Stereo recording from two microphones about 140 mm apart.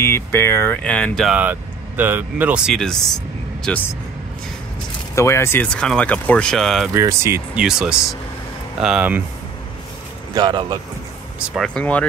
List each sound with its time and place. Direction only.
0.0 s speech: 15° left (ahead or behind)
1.3 s speech: 10° right (ahead or behind); by 3.8 s 5° left (ahead or behind)
5.1 s speech: 20° left (ahead or behind)
5.7 s speech: 5° left (ahead or behind)
6.9 s speech: 20° right (ahead or behind)
7.5 s speech: 5° right (ahead or behind)
10.3 s speech: 30° right (ahead or behind)
11.4 s speech: centre (ahead or behind)